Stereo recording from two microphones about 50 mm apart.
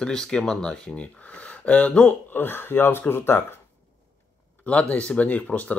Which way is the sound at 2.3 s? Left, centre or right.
Left.